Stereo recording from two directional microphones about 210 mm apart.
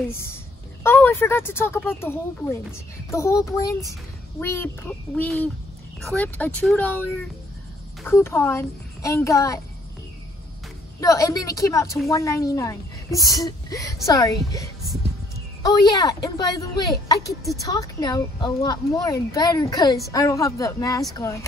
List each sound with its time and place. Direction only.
0.1 s speech: 10° left (ahead or behind)
11.0 s speech: 15° left (ahead or behind)
15.6 s speech: 15° left (ahead or behind)